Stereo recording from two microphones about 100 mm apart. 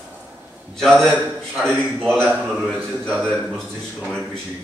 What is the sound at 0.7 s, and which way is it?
Speech, 5° left (ahead or behind).